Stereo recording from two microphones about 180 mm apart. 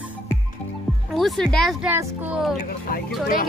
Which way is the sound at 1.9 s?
10° right (ahead or behind).